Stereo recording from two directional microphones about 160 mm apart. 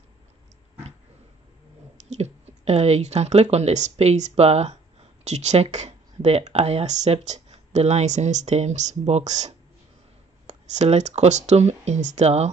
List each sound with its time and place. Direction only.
2.0 s speech: 45° right (ahead or behind)